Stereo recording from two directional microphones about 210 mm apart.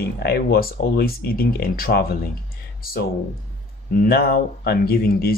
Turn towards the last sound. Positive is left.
turn(degrees=45)  # may be behind; listen again after turning